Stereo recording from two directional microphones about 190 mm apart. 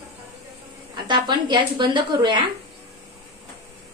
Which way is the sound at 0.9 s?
25° right (ahead or behind).